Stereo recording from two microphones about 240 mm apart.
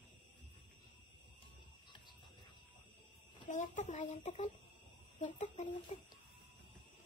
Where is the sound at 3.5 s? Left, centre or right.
Left.